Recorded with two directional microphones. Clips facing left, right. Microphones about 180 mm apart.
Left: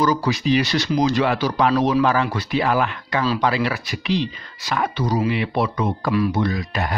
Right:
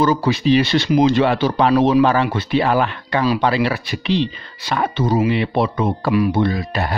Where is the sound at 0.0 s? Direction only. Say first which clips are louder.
Right 3 dB; 25° right (ahead or behind).